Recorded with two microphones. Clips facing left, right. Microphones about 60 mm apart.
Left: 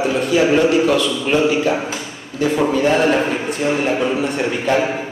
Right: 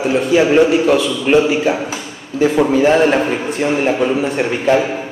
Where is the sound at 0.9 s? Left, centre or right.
Right.